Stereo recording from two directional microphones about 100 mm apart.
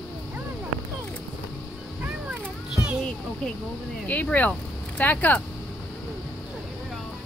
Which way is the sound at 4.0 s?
15° left (ahead or behind).